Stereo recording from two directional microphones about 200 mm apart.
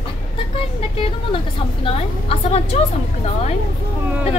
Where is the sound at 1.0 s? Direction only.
25° left (ahead or behind).